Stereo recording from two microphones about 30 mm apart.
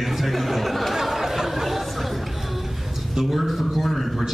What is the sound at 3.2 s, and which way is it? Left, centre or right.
A man's voice, centre.